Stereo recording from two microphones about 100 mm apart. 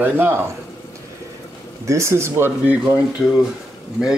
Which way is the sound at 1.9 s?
30° right (ahead or behind).